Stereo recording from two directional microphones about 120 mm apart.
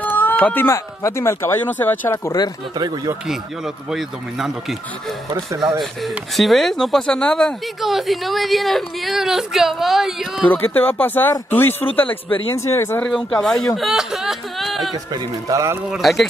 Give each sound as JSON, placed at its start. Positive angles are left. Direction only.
{"t": 0.0, "sound": "speech", "side_deg": 15}
{"t": 3.3, "sound": "speech", "side_deg": -5}
{"t": 5.8, "sound": "speech", "side_deg": 0}
{"t": 10.5, "sound": "speech", "side_deg": 15}
{"t": 13.0, "sound": "speech", "side_deg": 5}
{"t": 15.1, "sound": "speech", "side_deg": -30}
{"t": 15.9, "sound": "speech", "side_deg": 0}